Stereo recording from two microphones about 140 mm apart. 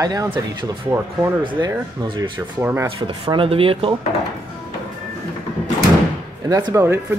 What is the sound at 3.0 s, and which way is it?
Speech, 40° right (ahead or behind).